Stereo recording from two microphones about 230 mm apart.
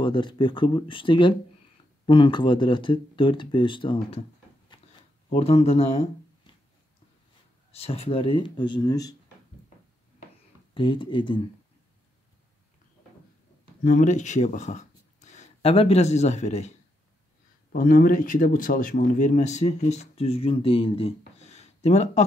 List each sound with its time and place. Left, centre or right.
0.0 s speech: left
4.7 s a sound: left
5.3 s speech: left
7.7 s speech: left
10.7 s speech: left
13.8 s speech: left
17.7 s speech: left
21.4 s a sound: left